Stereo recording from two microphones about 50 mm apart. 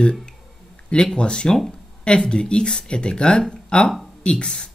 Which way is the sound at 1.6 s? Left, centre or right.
Left.